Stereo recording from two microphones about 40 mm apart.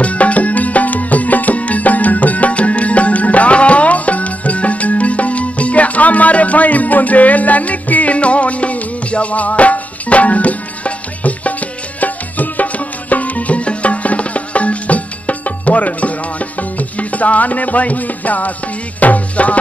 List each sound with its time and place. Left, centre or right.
0.0 s music: left